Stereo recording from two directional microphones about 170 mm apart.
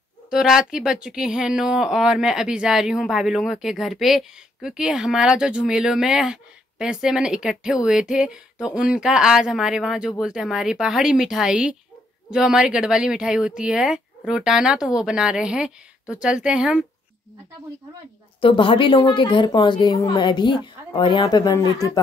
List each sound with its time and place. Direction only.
0.3 s speech: 5° right (ahead or behind)
18.4 s a woman's voice: 30° left (ahead or behind)